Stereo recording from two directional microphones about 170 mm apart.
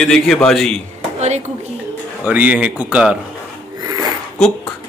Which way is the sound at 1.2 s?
40° right (ahead or behind).